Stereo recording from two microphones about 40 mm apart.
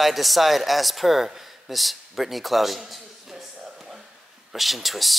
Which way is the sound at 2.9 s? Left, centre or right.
Centre.